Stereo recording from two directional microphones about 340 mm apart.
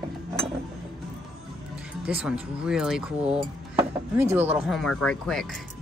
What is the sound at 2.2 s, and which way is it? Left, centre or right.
Speech, centre.